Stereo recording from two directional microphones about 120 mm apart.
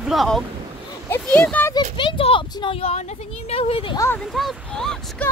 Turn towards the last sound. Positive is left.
turn(degrees=5)  # may be behind; listen again after turning